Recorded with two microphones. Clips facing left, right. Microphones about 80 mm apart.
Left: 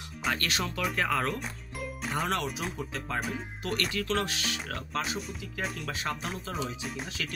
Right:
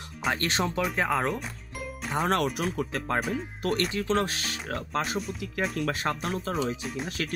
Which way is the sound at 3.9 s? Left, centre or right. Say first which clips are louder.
Right 4 dB; right.